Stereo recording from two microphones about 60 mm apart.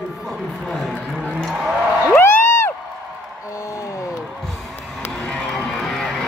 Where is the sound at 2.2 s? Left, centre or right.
Left.